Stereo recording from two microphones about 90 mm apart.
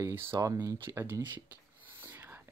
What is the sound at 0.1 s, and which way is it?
Speech, 25° right (ahead or behind).